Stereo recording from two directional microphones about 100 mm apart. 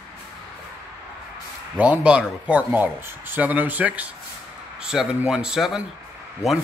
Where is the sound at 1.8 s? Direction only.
10° right (ahead or behind).